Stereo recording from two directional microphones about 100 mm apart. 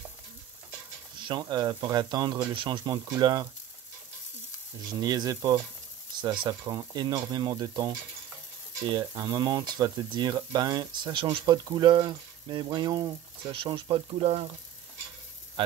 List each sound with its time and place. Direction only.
1.1 s speech: 50° right (ahead or behind)
4.8 s speech: 40° right (ahead or behind)
6.2 s speech: 50° right (ahead or behind)
6.6 s speech: 40° right (ahead or behind)
9.0 s speech: 35° right (ahead or behind); by 14.6 s 70° right (ahead or behind)